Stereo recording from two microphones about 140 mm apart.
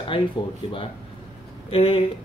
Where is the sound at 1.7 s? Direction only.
40° left (ahead or behind).